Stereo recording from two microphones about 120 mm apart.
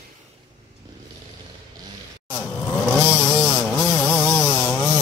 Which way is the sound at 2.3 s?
10° left (ahead or behind).